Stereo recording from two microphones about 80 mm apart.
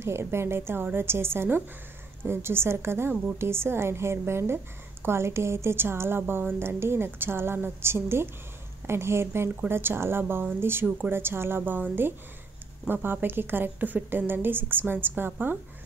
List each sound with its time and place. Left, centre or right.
0.0 s a woman's voice: right